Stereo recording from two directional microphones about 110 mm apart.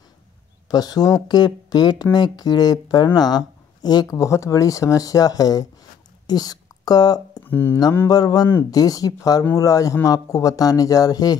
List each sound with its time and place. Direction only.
0.7 s speech: 35° left (ahead or behind)
6.2 s a sound: 35° left (ahead or behind)
7.4 s mantra: 20° left (ahead or behind)
8.1 s speech: 35° left (ahead or behind)